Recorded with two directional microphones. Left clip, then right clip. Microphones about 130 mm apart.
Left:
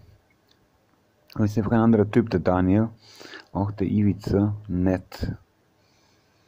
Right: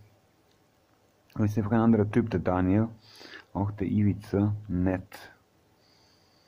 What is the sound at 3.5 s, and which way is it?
Speech, 25° left (ahead or behind).